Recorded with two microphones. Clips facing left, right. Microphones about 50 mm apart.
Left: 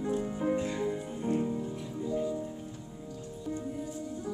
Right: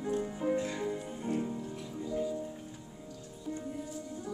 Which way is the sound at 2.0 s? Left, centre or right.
Left.